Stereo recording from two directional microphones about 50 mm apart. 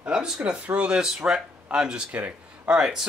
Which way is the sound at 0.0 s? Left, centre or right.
Centre.